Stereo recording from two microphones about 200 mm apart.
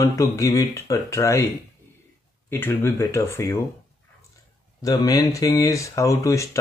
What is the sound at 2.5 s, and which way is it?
Speech, 10° left (ahead or behind).